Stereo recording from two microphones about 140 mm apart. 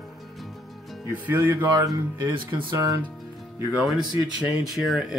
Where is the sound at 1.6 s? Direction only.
25° right (ahead or behind).